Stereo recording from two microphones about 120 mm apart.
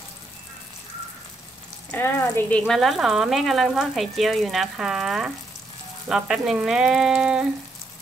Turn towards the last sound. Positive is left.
turn(degrees=-5)  # may be behind; listen again after turning